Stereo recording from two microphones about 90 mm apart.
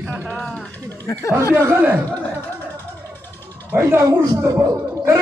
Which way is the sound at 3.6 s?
25° right (ahead or behind).